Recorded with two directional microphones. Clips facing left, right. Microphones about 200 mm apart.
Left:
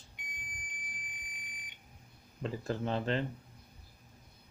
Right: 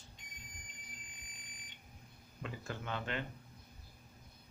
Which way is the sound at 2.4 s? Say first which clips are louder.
Left 9 dB; 35° left (ahead or behind).